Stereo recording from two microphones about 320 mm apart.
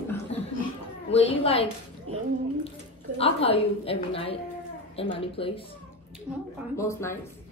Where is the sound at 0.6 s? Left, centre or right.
Centre.